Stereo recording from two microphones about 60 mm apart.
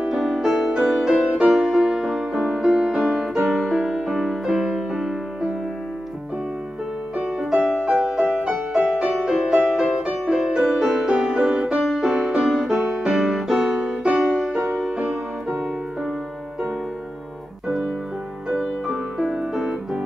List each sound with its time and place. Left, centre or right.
0.1 s music: centre
7.2 s music: centre
14.0 s music: centre
18.5 s music: centre